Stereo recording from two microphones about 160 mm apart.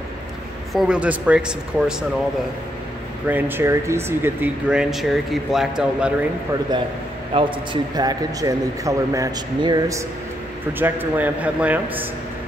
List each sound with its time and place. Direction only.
0.7 s speech: 5° right (ahead or behind)
3.3 s speech: 10° right (ahead or behind)
7.3 s a man's voice: 30° right (ahead or behind)
10.8 s speech: 10° right (ahead or behind)